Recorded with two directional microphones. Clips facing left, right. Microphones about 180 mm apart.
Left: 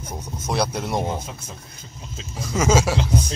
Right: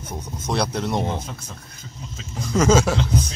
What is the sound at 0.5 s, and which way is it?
Speech, centre (ahead or behind).